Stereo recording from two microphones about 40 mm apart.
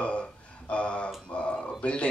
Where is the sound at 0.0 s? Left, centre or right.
Left.